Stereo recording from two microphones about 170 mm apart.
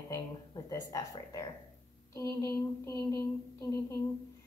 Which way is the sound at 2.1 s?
15° left (ahead or behind).